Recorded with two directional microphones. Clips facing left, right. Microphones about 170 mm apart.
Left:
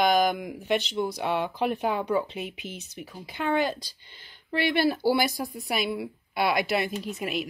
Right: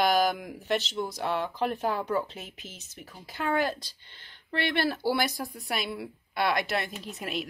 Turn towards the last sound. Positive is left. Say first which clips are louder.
# left 4 dB
turn(degrees=0)  # may be behind; listen again after turning